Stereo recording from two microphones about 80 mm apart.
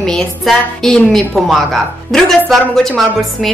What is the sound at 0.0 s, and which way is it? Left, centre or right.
A woman's voice, centre.